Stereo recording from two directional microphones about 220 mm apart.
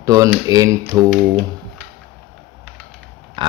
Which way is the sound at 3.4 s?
20° right (ahead or behind).